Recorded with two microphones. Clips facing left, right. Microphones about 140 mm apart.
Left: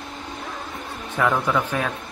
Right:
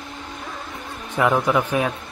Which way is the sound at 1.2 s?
15° right (ahead or behind).